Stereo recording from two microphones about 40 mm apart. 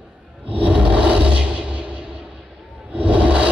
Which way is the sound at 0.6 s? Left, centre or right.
Right.